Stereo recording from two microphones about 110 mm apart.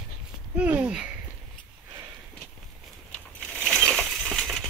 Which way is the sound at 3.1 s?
10° left (ahead or behind).